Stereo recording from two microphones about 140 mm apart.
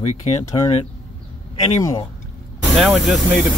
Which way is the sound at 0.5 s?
40° left (ahead or behind).